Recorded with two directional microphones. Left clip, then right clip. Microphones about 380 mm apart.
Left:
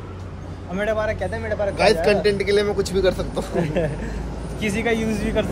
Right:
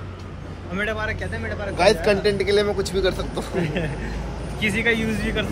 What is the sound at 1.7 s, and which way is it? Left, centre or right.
A man's voice, centre.